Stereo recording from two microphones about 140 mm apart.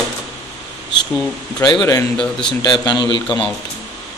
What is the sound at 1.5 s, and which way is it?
A man's voice, 25° left (ahead or behind).